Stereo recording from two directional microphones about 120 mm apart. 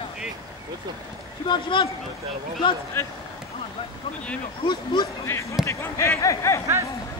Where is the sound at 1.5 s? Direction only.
40° left (ahead or behind).